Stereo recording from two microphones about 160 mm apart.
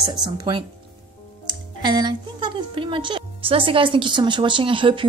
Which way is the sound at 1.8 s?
25° right (ahead or behind).